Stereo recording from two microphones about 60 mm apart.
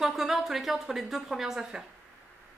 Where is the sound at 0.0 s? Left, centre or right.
Centre.